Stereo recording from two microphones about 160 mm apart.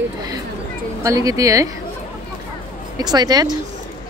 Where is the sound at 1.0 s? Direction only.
20° right (ahead or behind).